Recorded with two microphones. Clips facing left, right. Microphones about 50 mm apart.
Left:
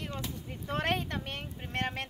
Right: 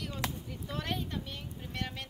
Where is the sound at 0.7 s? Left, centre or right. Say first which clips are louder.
Left 5 dB; left.